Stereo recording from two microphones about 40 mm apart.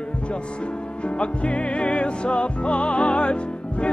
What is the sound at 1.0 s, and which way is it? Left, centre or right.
Music, left.